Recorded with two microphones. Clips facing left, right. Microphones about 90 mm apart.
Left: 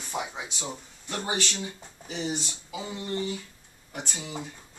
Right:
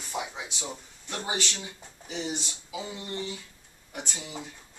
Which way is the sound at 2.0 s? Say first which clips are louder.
Left 2 dB; 15° left (ahead or behind).